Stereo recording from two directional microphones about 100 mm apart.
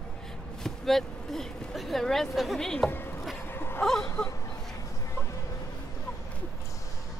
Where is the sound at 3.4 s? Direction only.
25° left (ahead or behind).